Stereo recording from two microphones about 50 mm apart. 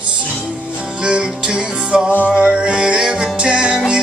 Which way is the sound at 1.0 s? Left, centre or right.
Centre.